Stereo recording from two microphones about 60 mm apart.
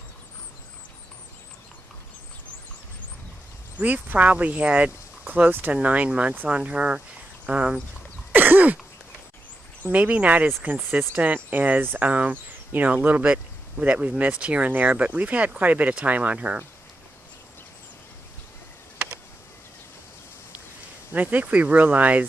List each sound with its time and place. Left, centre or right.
3.7 s speech: right
8.3 s a sound: right
9.8 s speech: right
21.1 s speech: right